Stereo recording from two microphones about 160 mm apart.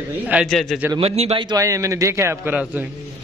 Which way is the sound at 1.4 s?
20° right (ahead or behind).